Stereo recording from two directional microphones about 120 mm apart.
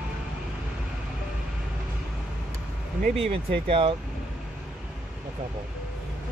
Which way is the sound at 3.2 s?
50° right (ahead or behind).